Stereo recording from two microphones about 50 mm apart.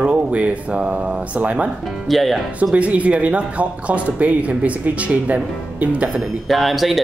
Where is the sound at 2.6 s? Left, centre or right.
Right.